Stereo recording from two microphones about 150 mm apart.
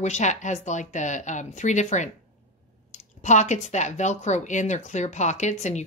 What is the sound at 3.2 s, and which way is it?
Speech, 55° left (ahead or behind).